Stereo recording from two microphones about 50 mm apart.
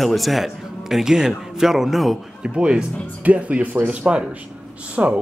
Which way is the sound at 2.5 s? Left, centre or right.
Centre.